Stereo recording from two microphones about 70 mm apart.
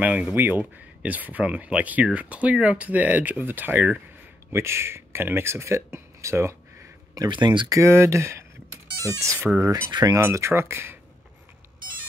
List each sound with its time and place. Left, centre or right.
0.0 s speech: right
4.5 s speech: right
7.2 s speech: right
7.8 s speech: right
9.8 s speech: right